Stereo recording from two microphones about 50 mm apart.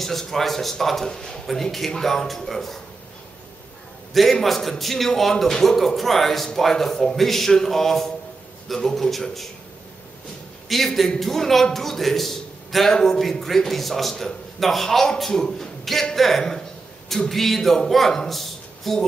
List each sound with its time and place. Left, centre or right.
0.0 s a man's voice: centre
4.1 s a man's voice: centre
10.7 s a man's voice: centre